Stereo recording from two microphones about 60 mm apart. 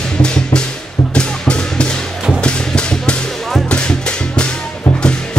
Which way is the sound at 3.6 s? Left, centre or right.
Centre.